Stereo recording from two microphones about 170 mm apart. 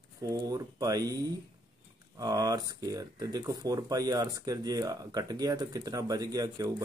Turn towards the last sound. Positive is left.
turn(degrees=-20)  # may be behind; listen again after turning